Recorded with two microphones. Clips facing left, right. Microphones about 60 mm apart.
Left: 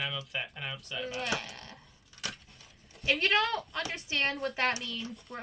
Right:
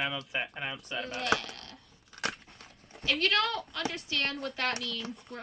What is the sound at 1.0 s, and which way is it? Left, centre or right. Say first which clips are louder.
Speech: right 4 dB; right.